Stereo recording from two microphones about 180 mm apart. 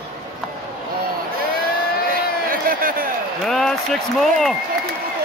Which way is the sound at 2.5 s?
50° right (ahead or behind).